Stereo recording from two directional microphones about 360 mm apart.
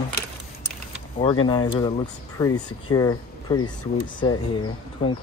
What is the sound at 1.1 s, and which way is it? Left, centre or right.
Speech, centre.